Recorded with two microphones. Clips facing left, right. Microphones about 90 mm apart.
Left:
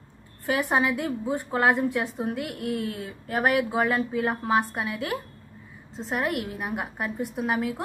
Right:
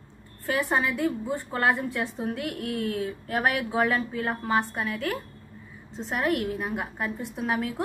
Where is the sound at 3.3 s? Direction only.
5° left (ahead or behind).